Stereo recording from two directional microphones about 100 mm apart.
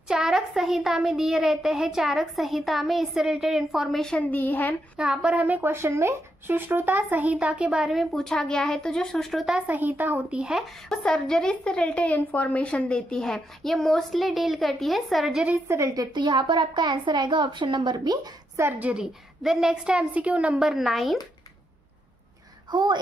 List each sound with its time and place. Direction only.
0.1 s a child's voice: 5° right (ahead or behind); by 4.7 s 15° left (ahead or behind)
4.9 s speech: 10° right (ahead or behind)
9.7 s speech: 20° right (ahead or behind)
10.9 s a child's voice: 5° left (ahead or behind)
15.5 s a woman's voice: 25° right (ahead or behind)
15.9 s a woman's voice: 45° right (ahead or behind)
18.6 s speech: 20° right (ahead or behind); by 21.2 s centre (ahead or behind)
22.7 s speech: 50° right (ahead or behind)